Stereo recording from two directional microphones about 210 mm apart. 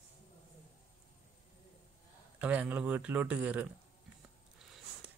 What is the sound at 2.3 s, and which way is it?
Speech, 5° right (ahead or behind).